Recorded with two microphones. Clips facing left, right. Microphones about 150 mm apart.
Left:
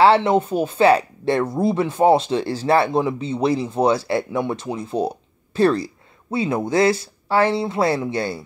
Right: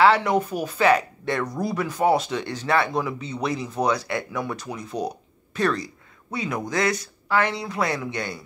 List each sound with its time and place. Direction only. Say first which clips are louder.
0.0 s speech: left 4 dB; 30° left (ahead or behind)